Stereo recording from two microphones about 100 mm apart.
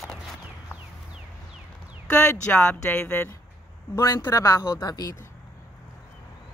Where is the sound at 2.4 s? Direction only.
10° left (ahead or behind).